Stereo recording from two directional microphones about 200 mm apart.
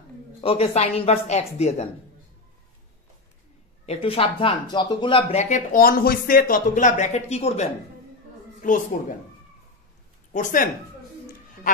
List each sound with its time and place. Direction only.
0.4 s speech: 30° left (ahead or behind)
3.8 s speech: 30° left (ahead or behind)
10.3 s speech: 40° left (ahead or behind)